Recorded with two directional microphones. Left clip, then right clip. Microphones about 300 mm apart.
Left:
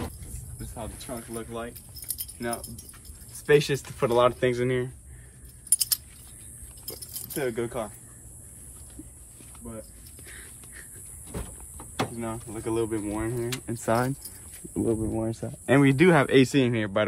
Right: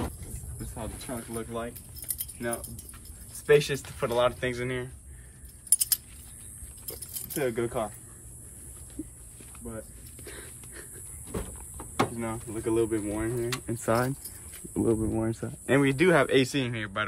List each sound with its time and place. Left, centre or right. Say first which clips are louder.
0.6 s speech: left 1 dB; centre
2.0 s keys jangling: left 1 dB; centre
3.3 s speech: left 1 dB; left
6.9 s a sound: left 1 dB; centre
10.2 s dog: right 2 dB; centre
11.2 s door: right 3 dB; centre
12.5 s speech: right 2 dB; centre
13.5 s speech: left 2 dB; centre
15.6 s speech: left 3 dB; centre